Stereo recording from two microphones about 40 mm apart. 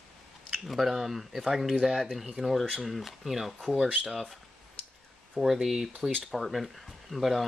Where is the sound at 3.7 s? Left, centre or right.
Right.